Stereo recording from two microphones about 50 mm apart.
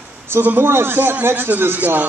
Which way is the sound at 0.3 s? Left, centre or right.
Right.